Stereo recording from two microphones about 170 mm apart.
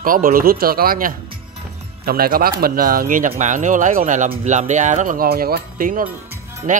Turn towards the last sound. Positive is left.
turn(degrees=-50)  # may be behind; listen again after turning